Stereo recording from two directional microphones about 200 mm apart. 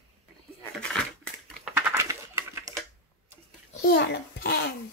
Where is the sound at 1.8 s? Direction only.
15° right (ahead or behind).